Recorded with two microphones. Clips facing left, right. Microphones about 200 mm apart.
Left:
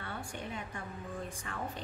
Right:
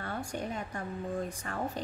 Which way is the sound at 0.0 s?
40° right (ahead or behind).